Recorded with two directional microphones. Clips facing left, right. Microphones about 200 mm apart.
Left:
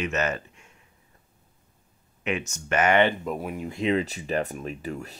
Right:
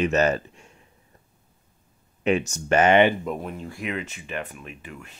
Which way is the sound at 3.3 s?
10° left (ahead or behind).